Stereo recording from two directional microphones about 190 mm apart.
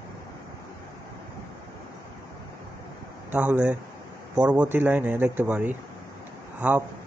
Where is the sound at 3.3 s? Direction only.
10° right (ahead or behind).